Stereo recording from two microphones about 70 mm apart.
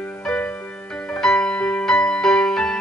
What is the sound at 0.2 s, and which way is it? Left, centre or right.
Music, centre.